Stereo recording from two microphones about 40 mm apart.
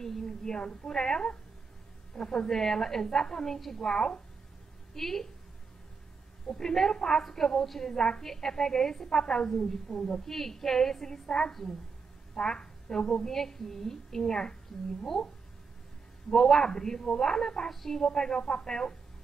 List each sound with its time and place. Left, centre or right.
0.0 s a sound: centre
0.8 s a woman's voice: centre
4.9 s a woman's voice: centre
6.4 s a woman's voice: centre
7.9 s a woman's voice: centre